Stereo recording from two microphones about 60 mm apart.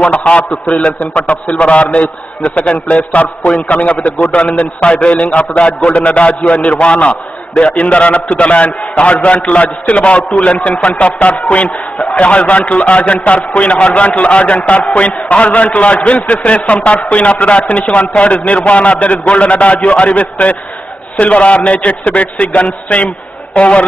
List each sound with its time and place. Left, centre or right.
0.0 s a man's voice: centre